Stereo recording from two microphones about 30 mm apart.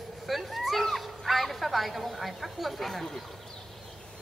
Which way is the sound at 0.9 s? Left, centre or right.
Centre.